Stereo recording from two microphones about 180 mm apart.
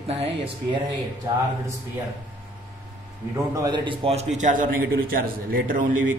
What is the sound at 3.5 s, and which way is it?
A man's voice, 20° right (ahead or behind).